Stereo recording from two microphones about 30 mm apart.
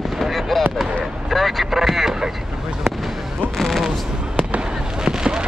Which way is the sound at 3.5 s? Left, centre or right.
Centre.